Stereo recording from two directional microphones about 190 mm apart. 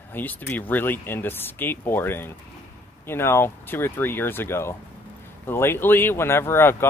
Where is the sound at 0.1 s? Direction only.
10° left (ahead or behind).